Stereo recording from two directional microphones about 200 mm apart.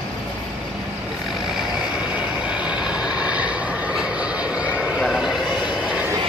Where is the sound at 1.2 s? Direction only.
Centre (ahead or behind).